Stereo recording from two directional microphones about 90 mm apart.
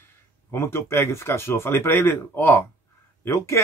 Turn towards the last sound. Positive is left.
turn(degrees=30)  # may be behind; listen again after turning